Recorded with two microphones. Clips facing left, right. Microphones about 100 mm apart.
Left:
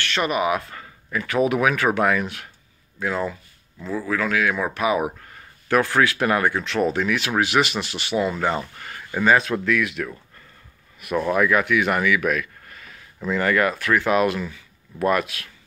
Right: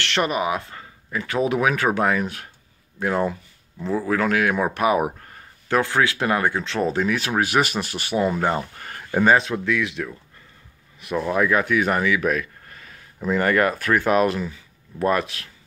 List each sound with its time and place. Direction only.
0.2 s speech: 30° right (ahead or behind)
3.0 s speech: 55° right (ahead or behind)
3.8 s speech: 25° right (ahead or behind)
4.1 s speech: 55° right (ahead or behind)
5.7 s speech: 25° right (ahead or behind); by 9.4 s 40° right (ahead or behind)
9.4 s speech: 20° right (ahead or behind)
11.3 s speech: 30° right (ahead or behind)